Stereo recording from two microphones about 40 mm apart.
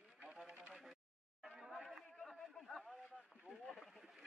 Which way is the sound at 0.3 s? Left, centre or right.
Centre.